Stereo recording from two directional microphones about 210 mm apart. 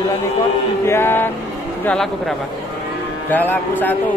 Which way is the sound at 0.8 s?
10° left (ahead or behind).